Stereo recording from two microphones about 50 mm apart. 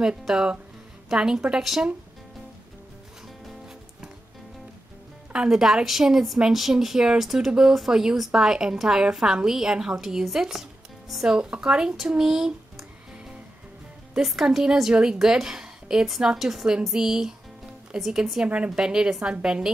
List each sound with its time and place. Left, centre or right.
0.2 s a woman's voice: centre
5.5 s a woman's voice: centre
11.3 s a woman's voice: centre
14.2 s a woman's voice: centre
18.4 s a woman's voice: right
18.8 s a woman's voice: centre